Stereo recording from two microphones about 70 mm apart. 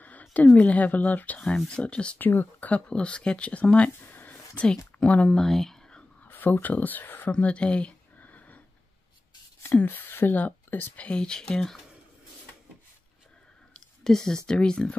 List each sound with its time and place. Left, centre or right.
0.0 s a sound: left
0.6 s speech: left
2.1 s speech: left
4.1 s a sound: left
4.6 s speech: centre
5.4 s a sound: centre
6.2 s speech: left
8.2 s sniff: left
9.8 s speech: left
11.1 s speech: centre
14.0 s speech: centre